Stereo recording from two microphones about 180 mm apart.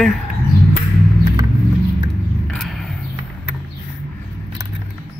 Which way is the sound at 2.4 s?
Centre (ahead or behind).